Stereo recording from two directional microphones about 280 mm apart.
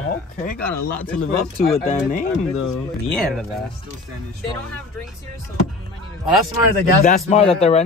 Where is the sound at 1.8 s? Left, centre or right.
Left.